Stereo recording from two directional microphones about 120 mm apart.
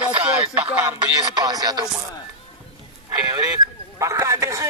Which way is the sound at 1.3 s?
30° right (ahead or behind).